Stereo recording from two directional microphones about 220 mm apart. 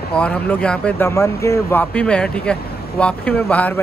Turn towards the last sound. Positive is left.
turn(degrees=5)  # may be behind; listen again after turning